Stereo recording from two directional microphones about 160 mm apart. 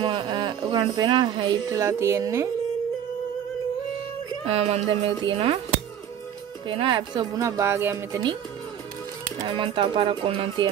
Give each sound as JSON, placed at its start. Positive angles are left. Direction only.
{"t": 0.0, "sound": "speech", "side_deg": -30}
{"t": 4.5, "sound": "speech", "side_deg": -40}
{"t": 6.7, "sound": "speech", "side_deg": -35}
{"t": 9.4, "sound": "speech", "side_deg": -30}